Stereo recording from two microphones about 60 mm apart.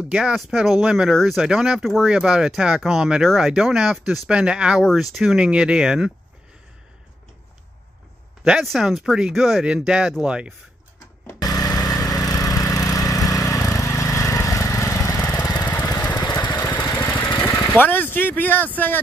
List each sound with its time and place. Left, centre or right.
0.1 s speech: centre
4.3 s speech: centre
4.8 s speech: centre
5.4 s speech: centre
8.6 s speech: centre
9.7 s speech: centre
11.0 s lawn mower: left
16.3 s vehicle: left
16.8 s vehicle: left
17.1 s vehicle: left
17.7 s speech: left